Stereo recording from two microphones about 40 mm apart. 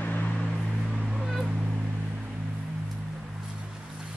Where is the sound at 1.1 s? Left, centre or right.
Centre.